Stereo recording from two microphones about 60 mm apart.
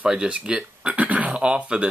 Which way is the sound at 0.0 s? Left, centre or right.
Centre.